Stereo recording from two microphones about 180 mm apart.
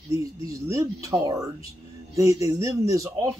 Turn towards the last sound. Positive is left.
turn(degrees=-20)  # may be behind; listen again after turning